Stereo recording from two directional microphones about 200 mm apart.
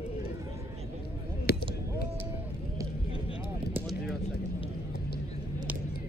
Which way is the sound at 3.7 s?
Centre (ahead or behind).